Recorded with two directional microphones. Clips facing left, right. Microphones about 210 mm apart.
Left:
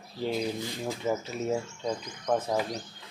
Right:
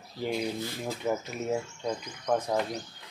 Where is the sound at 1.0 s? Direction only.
5° left (ahead or behind).